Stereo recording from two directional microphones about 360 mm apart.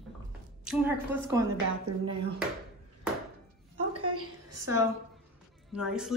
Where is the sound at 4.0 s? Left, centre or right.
Right.